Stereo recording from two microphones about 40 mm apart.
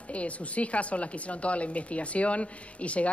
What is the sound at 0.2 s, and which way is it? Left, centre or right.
A woman's voice, left.